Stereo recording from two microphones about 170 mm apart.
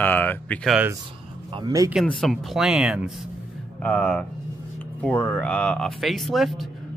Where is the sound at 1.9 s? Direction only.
5° left (ahead or behind).